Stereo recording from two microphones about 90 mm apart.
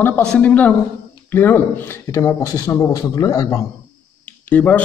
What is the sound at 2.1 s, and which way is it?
Speech, 40° left (ahead or behind).